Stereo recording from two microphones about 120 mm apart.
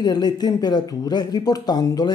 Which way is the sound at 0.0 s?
35° left (ahead or behind).